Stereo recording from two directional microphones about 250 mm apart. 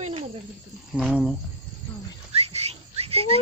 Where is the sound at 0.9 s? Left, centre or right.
Centre.